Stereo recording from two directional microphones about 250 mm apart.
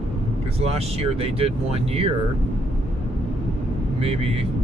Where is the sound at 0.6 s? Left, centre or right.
Right.